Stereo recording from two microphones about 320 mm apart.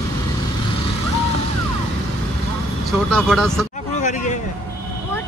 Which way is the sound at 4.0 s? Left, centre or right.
Left.